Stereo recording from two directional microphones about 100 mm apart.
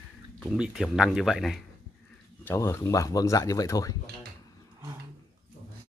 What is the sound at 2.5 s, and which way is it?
Speech, 30° left (ahead or behind).